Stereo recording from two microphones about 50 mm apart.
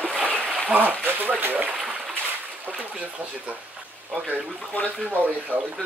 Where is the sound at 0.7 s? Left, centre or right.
Right.